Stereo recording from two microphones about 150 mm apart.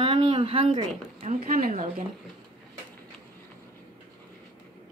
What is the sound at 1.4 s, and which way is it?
Speech, 80° right.